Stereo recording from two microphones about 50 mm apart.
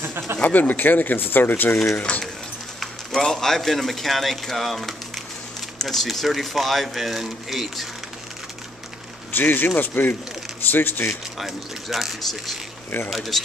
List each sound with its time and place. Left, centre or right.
0.0 s a sound: right
0.4 s speech: left
2.0 s speech: left
2.8 s speech: centre
9.3 s speech: left
11.1 s speech: centre